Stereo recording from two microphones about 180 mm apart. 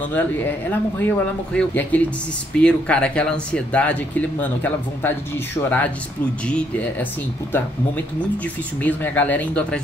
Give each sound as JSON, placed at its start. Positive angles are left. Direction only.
{"t": 0.1, "sound": "speech", "side_deg": 10}
{"t": 8.8, "sound": "speech", "side_deg": 10}